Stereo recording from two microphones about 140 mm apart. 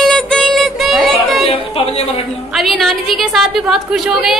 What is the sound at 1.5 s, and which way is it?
Speech, 45° left (ahead or behind).